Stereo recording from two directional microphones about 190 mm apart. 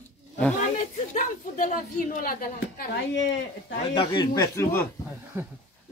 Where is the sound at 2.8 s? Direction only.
65° left (ahead or behind).